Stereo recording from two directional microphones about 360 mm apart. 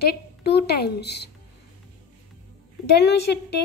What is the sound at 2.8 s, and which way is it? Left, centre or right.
Speech, left.